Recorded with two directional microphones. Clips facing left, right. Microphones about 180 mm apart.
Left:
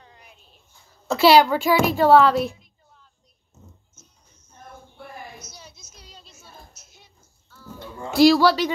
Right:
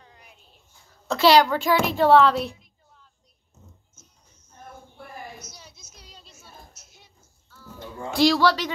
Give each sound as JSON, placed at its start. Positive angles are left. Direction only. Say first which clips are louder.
{"t": 1.0, "sound": "speech", "louder": "left 2 dB", "side_deg": 10}
{"t": 5.4, "sound": "a sound", "louder": "left 2 dB", "side_deg": 30}
{"t": 8.1, "sound": "speech", "louder": "left 4 dB", "side_deg": 5}